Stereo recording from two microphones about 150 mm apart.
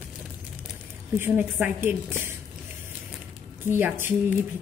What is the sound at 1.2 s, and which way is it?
A woman's voice, 10° right (ahead or behind).